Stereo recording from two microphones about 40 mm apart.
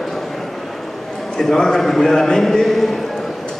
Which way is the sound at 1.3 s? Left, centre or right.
Centre.